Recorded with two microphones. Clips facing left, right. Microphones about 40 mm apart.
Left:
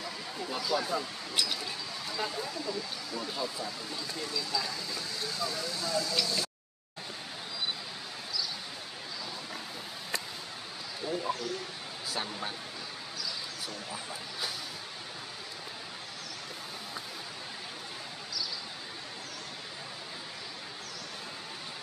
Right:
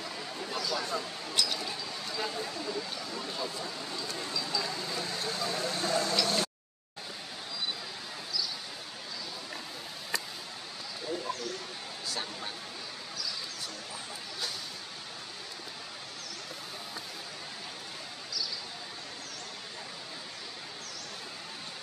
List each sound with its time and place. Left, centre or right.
0.6 s speech: centre
4.8 s speech: right
6.2 s a sound: right
11.1 s speech: centre